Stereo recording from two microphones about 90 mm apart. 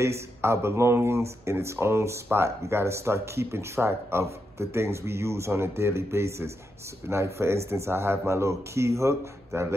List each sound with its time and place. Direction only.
0.0 s speech: 30° right (ahead or behind)